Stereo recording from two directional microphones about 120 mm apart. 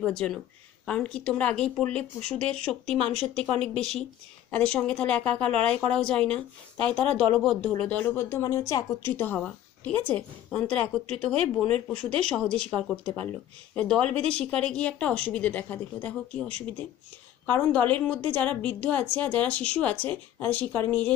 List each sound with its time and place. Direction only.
0.0 s speech: 5° left (ahead or behind)
7.8 s speech: 10° left (ahead or behind)
9.1 s speech: 15° left (ahead or behind)